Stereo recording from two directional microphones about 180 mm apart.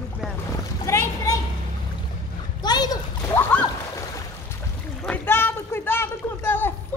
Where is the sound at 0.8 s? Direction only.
15° left (ahead or behind).